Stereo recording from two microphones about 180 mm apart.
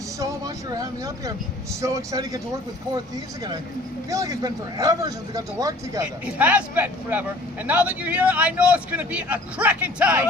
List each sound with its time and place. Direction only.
0.7 s speech: 20° right (ahead or behind)
4.1 s speech: 20° right (ahead or behind)
6.2 s speech: 10° right (ahead or behind)